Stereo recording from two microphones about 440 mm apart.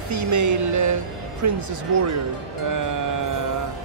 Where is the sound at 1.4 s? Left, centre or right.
Right.